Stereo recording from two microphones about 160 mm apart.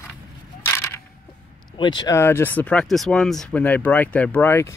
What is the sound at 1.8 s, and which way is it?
Speech, 25° left (ahead or behind).